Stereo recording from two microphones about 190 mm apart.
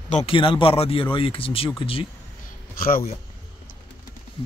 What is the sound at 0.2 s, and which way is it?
Speech, 25° left (ahead or behind).